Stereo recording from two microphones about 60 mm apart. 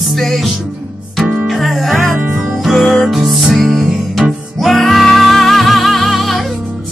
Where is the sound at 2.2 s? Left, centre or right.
Right.